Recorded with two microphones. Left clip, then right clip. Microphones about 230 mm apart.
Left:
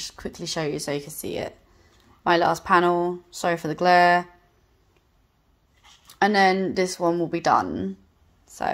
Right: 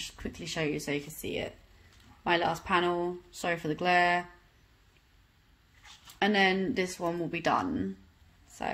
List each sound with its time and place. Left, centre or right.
0.3 s speech: centre
6.1 s speech: centre